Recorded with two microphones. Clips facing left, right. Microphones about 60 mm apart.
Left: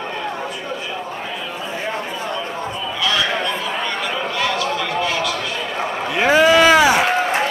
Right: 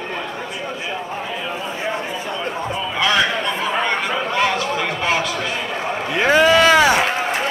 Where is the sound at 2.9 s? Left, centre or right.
Right.